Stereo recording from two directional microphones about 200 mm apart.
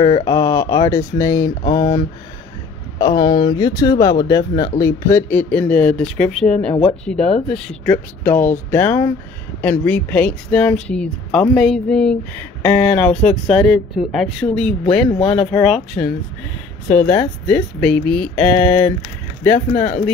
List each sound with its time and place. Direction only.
0.0 s speech: 20° left (ahead or behind)
19.7 s speech: 35° left (ahead or behind)